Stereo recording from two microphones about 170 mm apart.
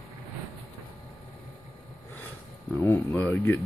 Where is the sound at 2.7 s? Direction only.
10° left (ahead or behind).